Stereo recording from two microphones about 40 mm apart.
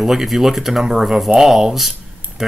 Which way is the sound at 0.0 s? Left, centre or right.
Centre.